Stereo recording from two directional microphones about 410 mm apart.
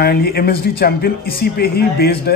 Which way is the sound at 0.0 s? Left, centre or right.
Left.